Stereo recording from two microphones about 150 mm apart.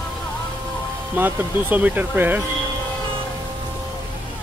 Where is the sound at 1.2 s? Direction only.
10° right (ahead or behind).